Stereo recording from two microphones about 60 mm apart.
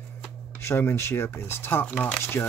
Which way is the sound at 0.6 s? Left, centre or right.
Left.